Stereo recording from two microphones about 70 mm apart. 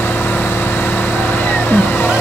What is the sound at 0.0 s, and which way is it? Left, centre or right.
Vehicle, left.